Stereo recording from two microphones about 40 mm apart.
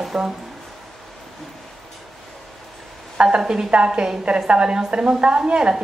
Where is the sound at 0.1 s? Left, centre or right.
Centre.